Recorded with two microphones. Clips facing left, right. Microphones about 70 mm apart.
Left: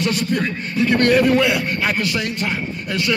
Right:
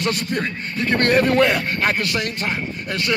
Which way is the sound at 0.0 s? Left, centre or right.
Right.